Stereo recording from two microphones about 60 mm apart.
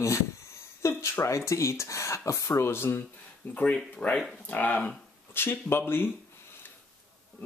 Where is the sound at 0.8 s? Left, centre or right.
Left.